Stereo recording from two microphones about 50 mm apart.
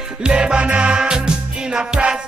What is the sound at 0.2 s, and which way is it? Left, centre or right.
Music, centre.